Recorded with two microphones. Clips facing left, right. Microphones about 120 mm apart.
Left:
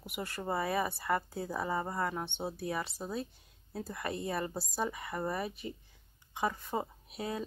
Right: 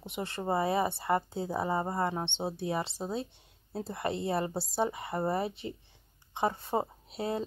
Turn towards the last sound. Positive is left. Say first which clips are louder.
# right 5 dB
turn(degrees=-30)  # may be behind; listen again after turning